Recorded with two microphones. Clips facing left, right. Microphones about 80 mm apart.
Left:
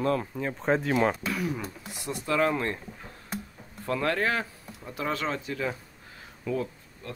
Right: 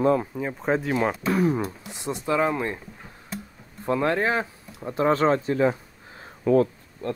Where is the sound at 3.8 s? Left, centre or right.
Right.